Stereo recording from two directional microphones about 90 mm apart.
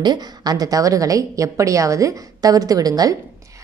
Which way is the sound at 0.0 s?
50° right (ahead or behind).